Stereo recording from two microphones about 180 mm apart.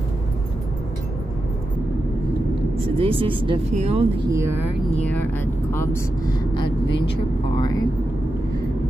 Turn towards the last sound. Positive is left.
turn(degrees=20)  # may be behind; listen again after turning